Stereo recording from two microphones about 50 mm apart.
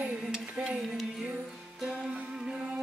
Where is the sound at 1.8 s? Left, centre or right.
Centre.